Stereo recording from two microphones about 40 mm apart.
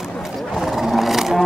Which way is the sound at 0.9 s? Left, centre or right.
Centre.